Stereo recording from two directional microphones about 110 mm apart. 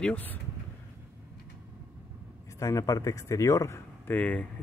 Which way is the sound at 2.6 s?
30° left (ahead or behind).